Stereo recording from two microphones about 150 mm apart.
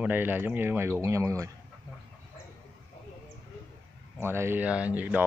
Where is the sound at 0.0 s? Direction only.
15° right (ahead or behind).